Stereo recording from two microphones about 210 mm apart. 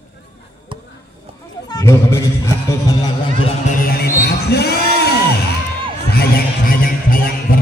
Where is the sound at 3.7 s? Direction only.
45° left (ahead or behind).